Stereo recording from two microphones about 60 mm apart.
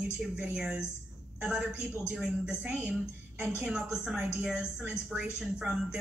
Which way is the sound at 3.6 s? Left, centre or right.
Centre.